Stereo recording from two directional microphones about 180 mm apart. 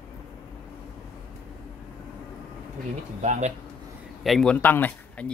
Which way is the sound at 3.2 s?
40° right (ahead or behind).